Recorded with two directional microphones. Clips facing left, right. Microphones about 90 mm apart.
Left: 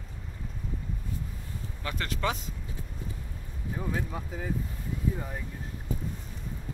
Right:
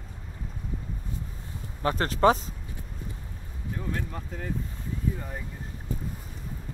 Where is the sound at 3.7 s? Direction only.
10° left (ahead or behind).